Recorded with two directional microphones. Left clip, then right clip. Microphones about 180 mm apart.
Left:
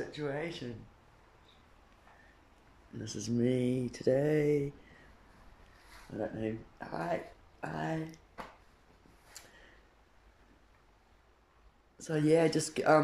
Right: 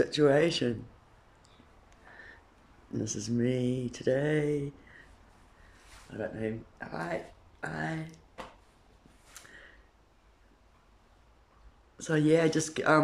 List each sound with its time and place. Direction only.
0.1 s speech: 60° right (ahead or behind)
3.2 s speech: centre (ahead or behind)
6.1 s speech: 10° left (ahead or behind)
12.0 s speech: centre (ahead or behind)